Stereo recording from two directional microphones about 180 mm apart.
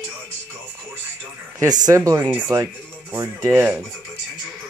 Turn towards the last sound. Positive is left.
turn(degrees=-10)  # may be behind; listen again after turning